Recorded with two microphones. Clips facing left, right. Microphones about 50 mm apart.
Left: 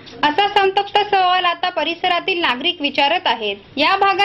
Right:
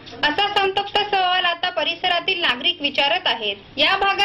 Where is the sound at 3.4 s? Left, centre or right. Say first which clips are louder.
Left 3 dB; left.